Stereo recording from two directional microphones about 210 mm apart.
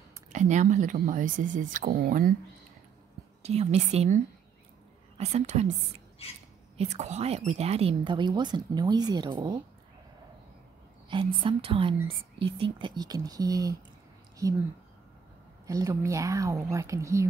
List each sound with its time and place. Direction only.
0.3 s speech: 35° right (ahead or behind)
3.4 s a woman's voice: 30° right (ahead or behind)
11.1 s a woman's voice: 25° right (ahead or behind)
15.6 s a woman's voice: 15° right (ahead or behind)